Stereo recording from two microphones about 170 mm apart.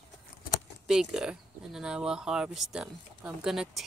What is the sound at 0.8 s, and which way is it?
Speech, 5° right (ahead or behind).